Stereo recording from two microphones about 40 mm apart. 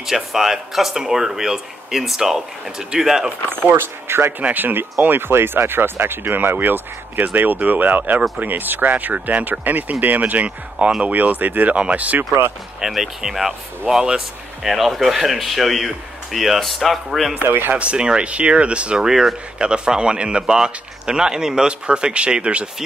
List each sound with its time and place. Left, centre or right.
0.0 s speech: centre
3.7 s speech: right
4.4 s speech: right
11.7 s speech: right
12.2 s speech: right
12.8 s speech: centre
17.5 s speech: right
17.7 s speech: right
19.0 s speech: centre
19.6 s speech: right